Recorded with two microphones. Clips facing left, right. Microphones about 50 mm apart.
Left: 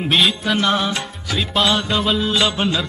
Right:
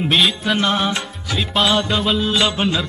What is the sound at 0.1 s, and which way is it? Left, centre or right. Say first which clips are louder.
Music: left 1 dB; centre.